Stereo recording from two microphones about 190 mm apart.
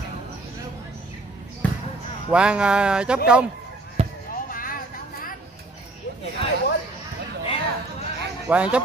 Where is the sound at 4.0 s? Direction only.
30° right (ahead or behind).